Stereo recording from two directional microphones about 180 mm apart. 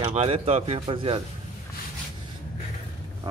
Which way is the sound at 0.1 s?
35° right (ahead or behind).